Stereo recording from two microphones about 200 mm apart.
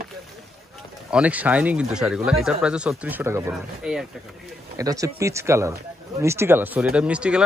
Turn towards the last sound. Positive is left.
turn(degrees=-5)  # may be behind; listen again after turning